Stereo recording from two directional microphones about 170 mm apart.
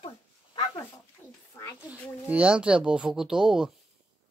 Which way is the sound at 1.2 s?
15° left (ahead or behind).